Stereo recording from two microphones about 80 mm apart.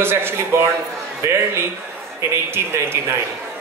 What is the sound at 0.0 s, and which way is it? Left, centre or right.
A man's voice, right.